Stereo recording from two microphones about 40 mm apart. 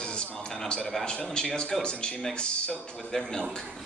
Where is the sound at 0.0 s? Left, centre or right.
Left.